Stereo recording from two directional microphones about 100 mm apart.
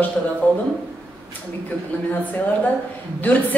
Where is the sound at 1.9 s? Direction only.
15° left (ahead or behind).